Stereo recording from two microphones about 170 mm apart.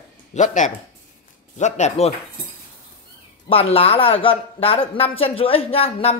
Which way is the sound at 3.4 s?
35° left (ahead or behind).